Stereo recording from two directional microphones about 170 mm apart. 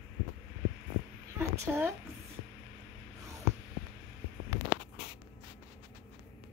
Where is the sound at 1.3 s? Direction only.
15° right (ahead or behind).